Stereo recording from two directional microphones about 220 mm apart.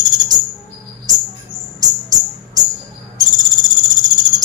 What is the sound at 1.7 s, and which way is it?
Music, 15° right (ahead or behind).